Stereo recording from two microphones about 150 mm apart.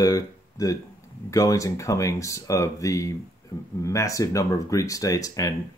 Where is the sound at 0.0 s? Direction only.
25° left (ahead or behind).